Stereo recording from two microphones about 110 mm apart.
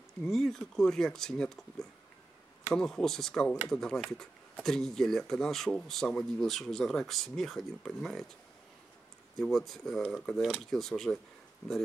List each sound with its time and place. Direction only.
0.2 s speech: 5° left (ahead or behind)
9.4 s speech: 5° left (ahead or behind)